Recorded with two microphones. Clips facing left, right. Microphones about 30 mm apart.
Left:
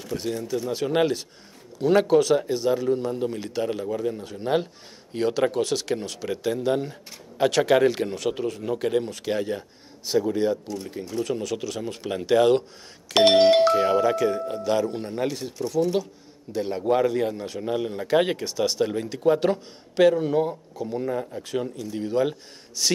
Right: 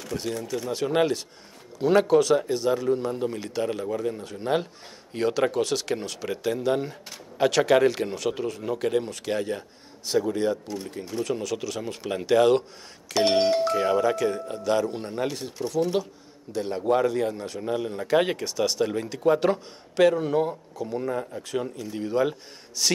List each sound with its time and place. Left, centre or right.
0.1 s speech: centre
13.3 s speech: left
13.7 s speech: centre
16.5 s speech: centre